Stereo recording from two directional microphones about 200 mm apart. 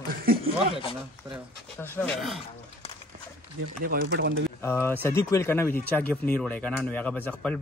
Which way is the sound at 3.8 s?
50° right (ahead or behind).